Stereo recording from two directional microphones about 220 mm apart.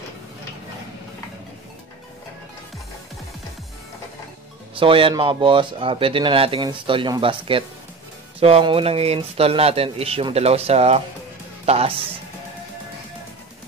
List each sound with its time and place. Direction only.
4.7 s speech: 25° right (ahead or behind)